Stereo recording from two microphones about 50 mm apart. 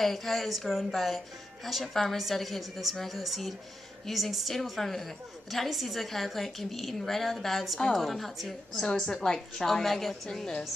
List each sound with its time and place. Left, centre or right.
0.0 s a woman's voice: centre